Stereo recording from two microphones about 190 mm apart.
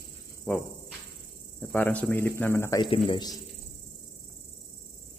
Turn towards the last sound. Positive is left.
turn(degrees=20)  # may be behind; listen again after turning